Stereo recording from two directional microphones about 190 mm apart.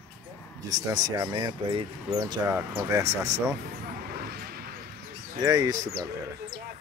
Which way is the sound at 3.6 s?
55° right (ahead or behind).